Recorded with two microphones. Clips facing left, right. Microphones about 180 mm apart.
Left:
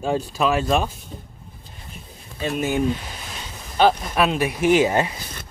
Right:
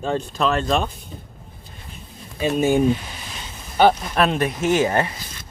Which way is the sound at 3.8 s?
5° left (ahead or behind).